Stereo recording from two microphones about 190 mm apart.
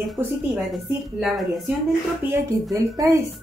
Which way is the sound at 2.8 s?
15° right (ahead or behind).